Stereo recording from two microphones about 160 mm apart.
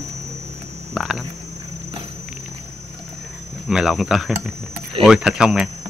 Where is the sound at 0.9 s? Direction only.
Centre (ahead or behind).